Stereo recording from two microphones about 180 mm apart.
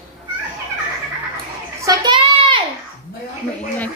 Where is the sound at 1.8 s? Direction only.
20° right (ahead or behind).